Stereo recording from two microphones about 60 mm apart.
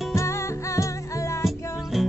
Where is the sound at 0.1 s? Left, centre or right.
Left.